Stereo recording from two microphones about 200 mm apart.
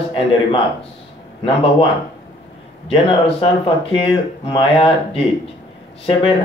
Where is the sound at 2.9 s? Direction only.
25° left (ahead or behind).